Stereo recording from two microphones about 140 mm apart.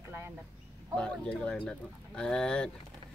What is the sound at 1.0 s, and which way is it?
Speech, 5° left (ahead or behind).